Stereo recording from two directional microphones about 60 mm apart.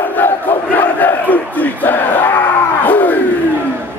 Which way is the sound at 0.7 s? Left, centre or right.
Left.